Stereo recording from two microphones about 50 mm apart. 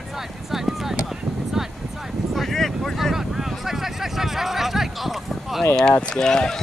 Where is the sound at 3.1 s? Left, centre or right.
Centre.